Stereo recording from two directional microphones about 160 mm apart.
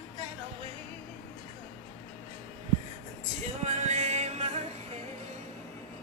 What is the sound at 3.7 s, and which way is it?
Music, 45° right (ahead or behind).